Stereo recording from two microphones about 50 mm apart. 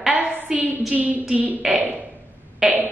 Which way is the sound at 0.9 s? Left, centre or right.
Right.